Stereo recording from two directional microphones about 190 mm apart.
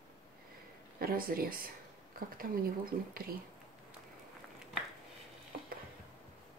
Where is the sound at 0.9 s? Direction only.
50° right (ahead or behind).